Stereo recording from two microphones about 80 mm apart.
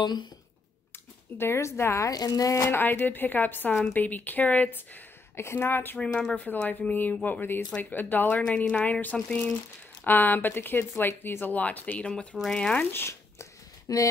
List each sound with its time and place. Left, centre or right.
1.4 s a woman's voice: left
2.0 s speech: left
5.9 s speech: centre
6.4 s speech: left
12.9 s a sound: left
13.9 s speech: left